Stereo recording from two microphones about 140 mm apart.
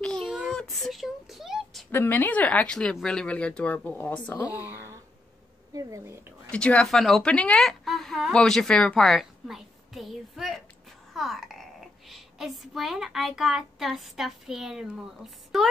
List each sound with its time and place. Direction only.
0.0 s child singing: 5° left (ahead or behind)
1.9 s speech: 15° left (ahead or behind)
4.6 s a sound: 15° right (ahead or behind)
5.8 s speech: 20° right (ahead or behind)
6.5 s a child's voice: 10° left (ahead or behind)